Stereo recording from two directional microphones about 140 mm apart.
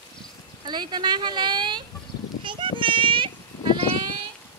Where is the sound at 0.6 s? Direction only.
30° right (ahead or behind).